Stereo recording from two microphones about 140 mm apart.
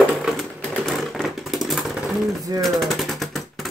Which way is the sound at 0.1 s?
Centre (ahead or behind).